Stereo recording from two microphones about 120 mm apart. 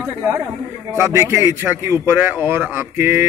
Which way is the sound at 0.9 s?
25° right (ahead or behind).